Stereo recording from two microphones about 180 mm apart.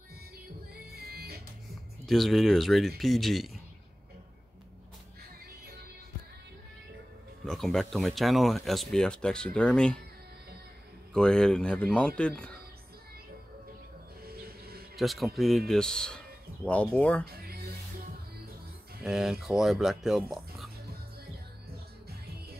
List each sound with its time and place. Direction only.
0.9 s music: 60° right (ahead or behind)
2.0 s speech: centre (ahead or behind)
7.4 s speech: centre (ahead or behind)
11.1 s speech: 5° left (ahead or behind)
14.2 s a sound: 55° right (ahead or behind)
15.0 s speech: centre (ahead or behind)
17.2 s music: 60° right (ahead or behind)
19.0 s speech: centre (ahead or behind)